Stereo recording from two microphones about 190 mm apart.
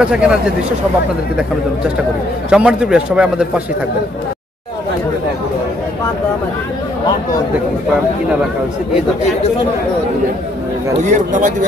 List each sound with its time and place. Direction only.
0.0 s speech: 5° right (ahead or behind)
2.5 s speech: 5° right (ahead or behind)
11.0 s speech: 40° right (ahead or behind)